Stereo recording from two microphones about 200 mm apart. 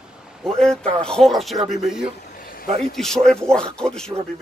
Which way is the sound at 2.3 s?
45° left (ahead or behind).